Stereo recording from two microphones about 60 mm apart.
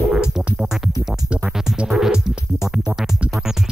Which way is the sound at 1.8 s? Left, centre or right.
Centre.